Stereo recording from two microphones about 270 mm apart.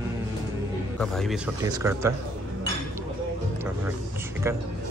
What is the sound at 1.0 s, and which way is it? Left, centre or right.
A man's voice, centre.